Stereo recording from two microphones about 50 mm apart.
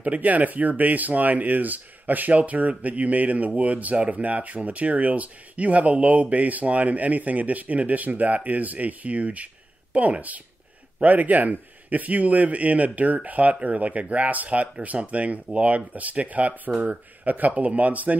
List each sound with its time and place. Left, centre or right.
0.0 s speech: right